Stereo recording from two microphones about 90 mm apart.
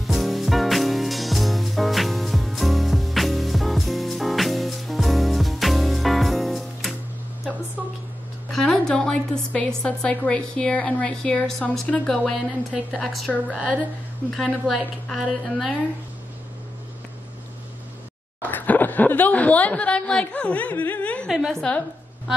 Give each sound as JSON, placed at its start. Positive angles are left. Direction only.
{"t": 0.0, "sound": "music", "side_deg": 0}
{"t": 8.5, "sound": "a woman's voice", "side_deg": 5}
{"t": 18.4, "sound": "speech", "side_deg": 20}
{"t": 21.3, "sound": "a woman's voice", "side_deg": 0}